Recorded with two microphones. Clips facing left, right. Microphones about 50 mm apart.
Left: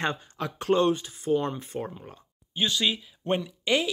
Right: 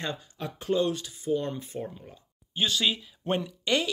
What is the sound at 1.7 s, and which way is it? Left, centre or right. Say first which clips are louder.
Speech: left 3 dB; left.